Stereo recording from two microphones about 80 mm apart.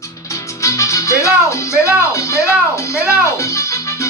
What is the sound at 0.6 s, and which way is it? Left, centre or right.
Speech, left.